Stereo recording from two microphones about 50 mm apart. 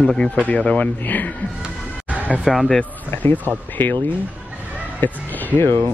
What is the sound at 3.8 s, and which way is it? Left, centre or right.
Speech, left.